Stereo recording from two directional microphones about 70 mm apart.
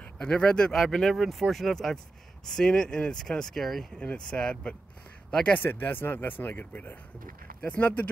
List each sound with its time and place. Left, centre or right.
0.0 s speech: centre
0.8 s speech: centre
4.0 s speech: centre
5.6 s speech: left